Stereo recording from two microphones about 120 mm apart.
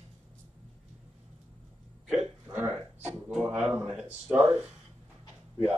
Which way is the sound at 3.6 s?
15° right (ahead or behind).